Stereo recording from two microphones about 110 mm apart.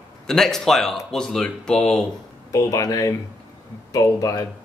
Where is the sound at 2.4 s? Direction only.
30° left (ahead or behind).